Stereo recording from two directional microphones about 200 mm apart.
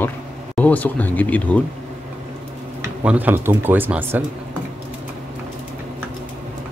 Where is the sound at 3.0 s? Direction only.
10° right (ahead or behind).